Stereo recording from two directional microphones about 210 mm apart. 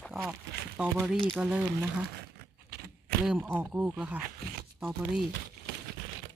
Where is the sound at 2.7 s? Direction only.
50° right (ahead or behind).